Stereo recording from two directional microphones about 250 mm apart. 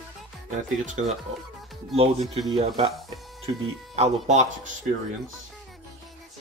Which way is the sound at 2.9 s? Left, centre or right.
Centre.